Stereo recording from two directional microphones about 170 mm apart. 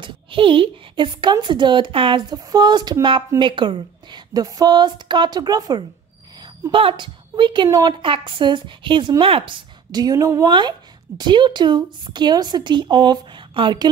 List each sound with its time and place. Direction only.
0.0 s a woman's voice: 30° right (ahead or behind)